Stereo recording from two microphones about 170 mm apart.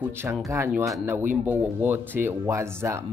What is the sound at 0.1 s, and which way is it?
Speech, 15° right (ahead or behind).